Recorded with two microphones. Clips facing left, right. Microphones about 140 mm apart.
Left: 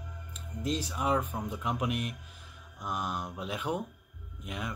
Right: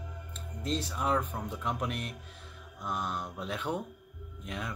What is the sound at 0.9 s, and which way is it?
Speech, 10° left (ahead or behind).